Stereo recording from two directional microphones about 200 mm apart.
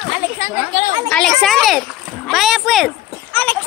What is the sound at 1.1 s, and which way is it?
Speech, centre (ahead or behind).